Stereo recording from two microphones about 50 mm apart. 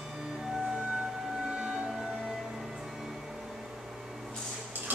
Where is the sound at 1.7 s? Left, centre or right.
Centre.